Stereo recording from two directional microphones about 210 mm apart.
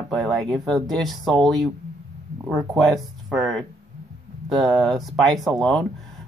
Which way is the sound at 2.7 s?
Centre (ahead or behind).